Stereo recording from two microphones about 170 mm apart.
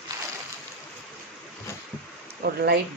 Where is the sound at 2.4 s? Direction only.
70° right (ahead or behind).